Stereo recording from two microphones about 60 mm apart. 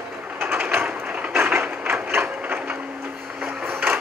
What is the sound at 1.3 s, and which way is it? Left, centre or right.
Printer, right.